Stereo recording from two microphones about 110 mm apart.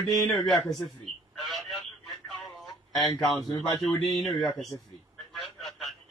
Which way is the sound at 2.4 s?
Centre (ahead or behind).